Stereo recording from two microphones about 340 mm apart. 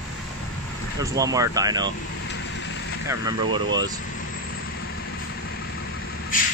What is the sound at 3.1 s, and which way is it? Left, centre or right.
Speech, centre.